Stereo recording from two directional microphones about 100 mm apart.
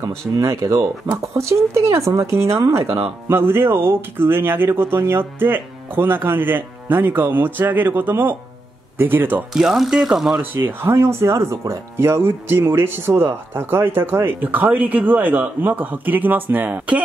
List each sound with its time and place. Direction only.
0.0 s speech: 30° right (ahead or behind)
2.8 s speech: 70° right (ahead or behind)
3.3 s speech: 20° right (ahead or behind)
9.5 s speech: 5° right (ahead or behind)
10.4 s speech: 20° right (ahead or behind)